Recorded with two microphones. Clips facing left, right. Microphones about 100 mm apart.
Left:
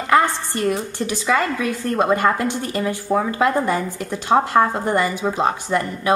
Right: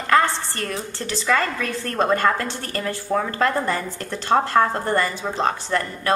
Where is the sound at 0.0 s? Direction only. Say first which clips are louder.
Left 2 dB; 15° left (ahead or behind).